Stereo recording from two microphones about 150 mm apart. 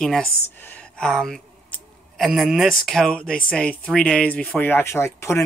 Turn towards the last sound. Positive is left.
turn(degrees=15)  # may be behind; listen again after turning